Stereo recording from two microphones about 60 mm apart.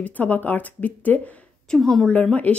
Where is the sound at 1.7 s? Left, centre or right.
Centre.